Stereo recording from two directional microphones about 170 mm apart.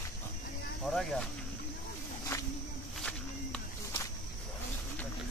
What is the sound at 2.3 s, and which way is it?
Walk, 15° left (ahead or behind).